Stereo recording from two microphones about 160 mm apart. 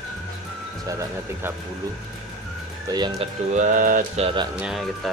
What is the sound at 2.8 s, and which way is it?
Speech, 25° right (ahead or behind).